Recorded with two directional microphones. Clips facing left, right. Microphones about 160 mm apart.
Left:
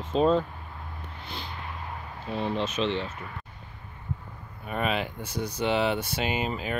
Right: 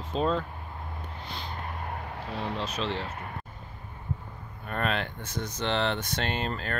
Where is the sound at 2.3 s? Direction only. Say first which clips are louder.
Left 5 dB; 25° left (ahead or behind).